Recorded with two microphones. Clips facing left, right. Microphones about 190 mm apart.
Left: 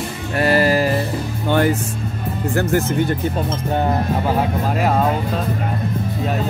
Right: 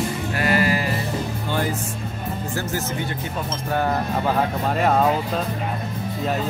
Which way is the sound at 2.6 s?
55° left (ahead or behind).